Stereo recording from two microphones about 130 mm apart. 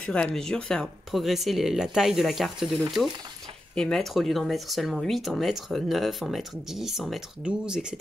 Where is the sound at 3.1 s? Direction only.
35° right (ahead or behind).